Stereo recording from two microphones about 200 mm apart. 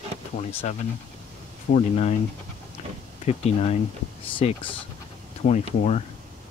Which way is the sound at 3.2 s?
30° left (ahead or behind).